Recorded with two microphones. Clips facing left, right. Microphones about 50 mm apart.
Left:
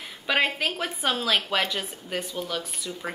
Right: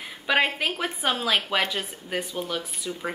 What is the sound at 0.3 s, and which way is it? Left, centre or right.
Speech, centre.